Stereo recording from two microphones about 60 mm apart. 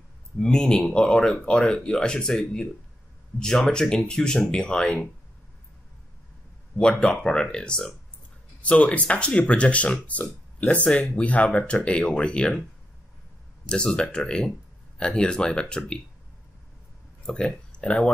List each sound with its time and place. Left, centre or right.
0.4 s speech: centre
6.8 s speech: centre
8.6 s speech: left
13.7 s speech: centre
17.3 s speech: centre